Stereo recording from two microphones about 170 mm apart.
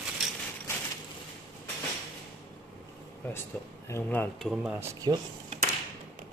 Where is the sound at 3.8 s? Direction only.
15° left (ahead or behind).